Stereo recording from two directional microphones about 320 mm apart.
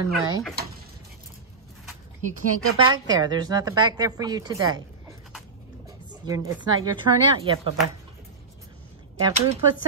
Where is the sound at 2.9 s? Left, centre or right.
Centre.